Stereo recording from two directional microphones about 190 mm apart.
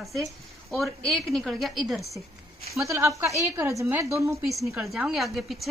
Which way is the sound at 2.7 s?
15° right (ahead or behind).